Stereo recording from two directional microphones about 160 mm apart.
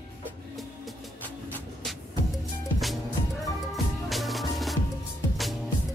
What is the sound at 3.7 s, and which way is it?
Music, centre (ahead or behind).